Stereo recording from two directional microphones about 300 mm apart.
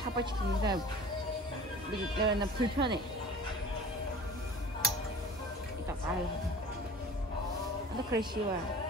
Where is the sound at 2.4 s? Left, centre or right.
Centre.